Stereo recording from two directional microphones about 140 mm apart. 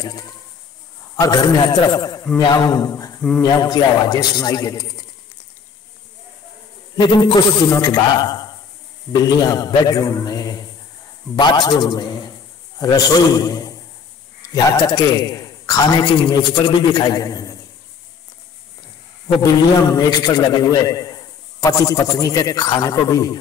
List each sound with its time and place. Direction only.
1.2 s a man's voice: 25° left (ahead or behind)
7.0 s a man's voice: 30° left (ahead or behind)
19.4 s a man's voice: 25° left (ahead or behind)